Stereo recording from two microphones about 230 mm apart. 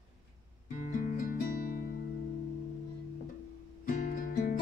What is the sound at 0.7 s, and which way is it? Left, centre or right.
Music, left.